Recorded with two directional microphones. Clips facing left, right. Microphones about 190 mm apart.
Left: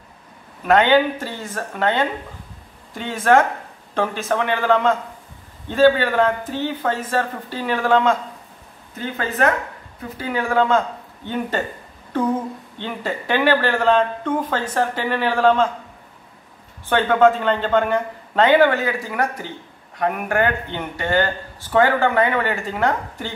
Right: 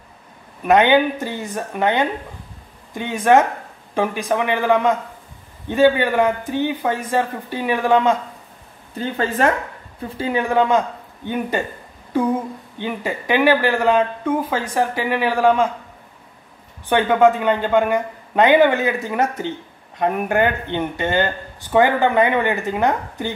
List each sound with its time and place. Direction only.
0.7 s speech: 15° right (ahead or behind)
8.9 s speech: 30° right (ahead or behind); by 15.7 s 10° right (ahead or behind)
16.8 s speech: 15° right (ahead or behind)